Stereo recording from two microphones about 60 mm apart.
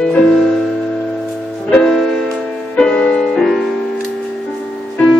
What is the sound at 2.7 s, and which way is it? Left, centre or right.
Music, centre.